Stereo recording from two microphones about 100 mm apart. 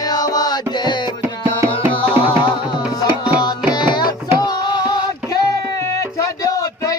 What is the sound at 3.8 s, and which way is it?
Music, 45° left (ahead or behind).